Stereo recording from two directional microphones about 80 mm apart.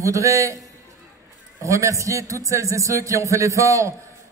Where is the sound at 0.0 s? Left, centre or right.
Right.